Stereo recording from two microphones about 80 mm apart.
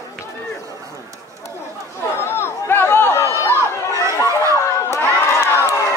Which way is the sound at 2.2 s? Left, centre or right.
Left.